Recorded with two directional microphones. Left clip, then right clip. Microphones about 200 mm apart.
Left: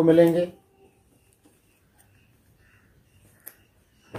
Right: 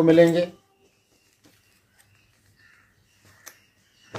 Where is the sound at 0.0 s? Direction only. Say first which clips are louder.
Right 1 dB; 15° left (ahead or behind).